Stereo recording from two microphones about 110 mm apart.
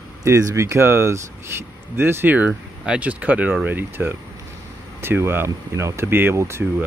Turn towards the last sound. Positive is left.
turn(degrees=-25)  # may be behind; listen again after turning